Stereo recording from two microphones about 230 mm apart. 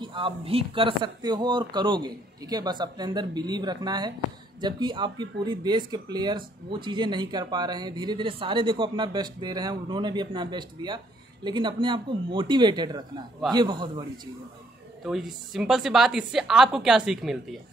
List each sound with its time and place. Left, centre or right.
0.0 s speech: right
15.0 s a woman's voice: centre